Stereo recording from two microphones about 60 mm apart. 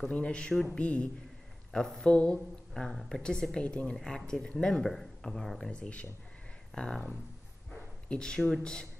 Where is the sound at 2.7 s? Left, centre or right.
Centre.